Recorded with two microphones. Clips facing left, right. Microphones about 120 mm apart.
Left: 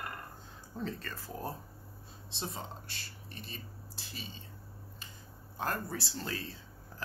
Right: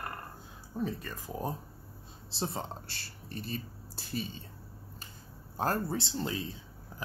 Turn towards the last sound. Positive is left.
turn(degrees=-20)  # may be behind; listen again after turning